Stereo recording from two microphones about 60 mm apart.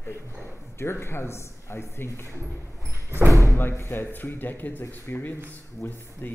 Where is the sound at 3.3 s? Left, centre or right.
Left.